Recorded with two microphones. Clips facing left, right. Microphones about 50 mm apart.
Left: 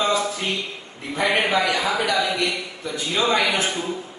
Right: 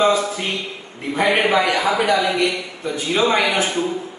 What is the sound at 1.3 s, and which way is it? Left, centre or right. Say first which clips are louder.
A man's voice: right 3 dB; centre.